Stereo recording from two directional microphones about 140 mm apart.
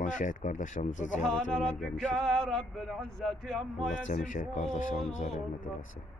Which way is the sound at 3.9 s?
65° left (ahead or behind).